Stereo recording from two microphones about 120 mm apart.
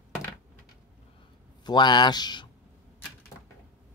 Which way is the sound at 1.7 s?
40° left (ahead or behind).